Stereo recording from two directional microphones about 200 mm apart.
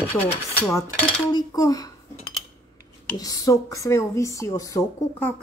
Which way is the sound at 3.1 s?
15° left (ahead or behind).